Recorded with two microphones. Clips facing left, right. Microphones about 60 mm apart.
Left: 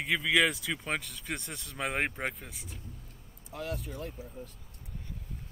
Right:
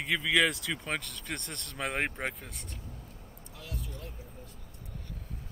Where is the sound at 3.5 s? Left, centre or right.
Left.